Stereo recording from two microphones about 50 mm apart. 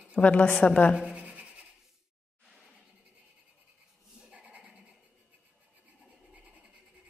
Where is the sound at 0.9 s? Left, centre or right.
Right.